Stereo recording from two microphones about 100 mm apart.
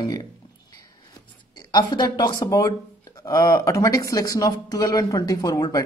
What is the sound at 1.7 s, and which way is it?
Speech, 45° left (ahead or behind).